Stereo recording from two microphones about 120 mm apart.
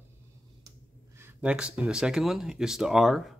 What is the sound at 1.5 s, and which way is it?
Speech, 5° right (ahead or behind).